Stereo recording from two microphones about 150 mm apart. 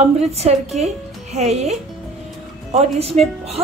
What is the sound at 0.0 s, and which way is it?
A woman's voice, 45° right (ahead or behind).